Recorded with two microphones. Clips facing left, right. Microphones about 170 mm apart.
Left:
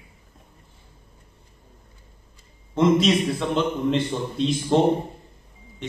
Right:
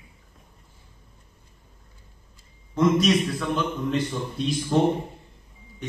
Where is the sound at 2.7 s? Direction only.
25° left (ahead or behind).